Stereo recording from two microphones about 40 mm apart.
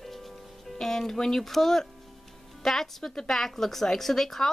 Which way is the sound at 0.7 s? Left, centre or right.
Centre.